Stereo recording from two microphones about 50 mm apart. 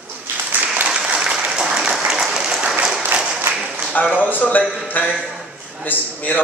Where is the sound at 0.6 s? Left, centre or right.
Right.